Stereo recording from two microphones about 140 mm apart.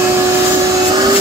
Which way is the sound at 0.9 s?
30° right (ahead or behind).